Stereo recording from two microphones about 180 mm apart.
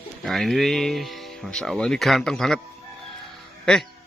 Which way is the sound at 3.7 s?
5° left (ahead or behind).